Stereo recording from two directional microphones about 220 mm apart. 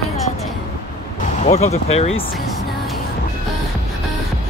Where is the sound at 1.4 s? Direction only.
30° left (ahead or behind).